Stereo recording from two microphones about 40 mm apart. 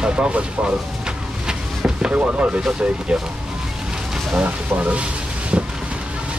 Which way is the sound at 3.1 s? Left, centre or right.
Centre.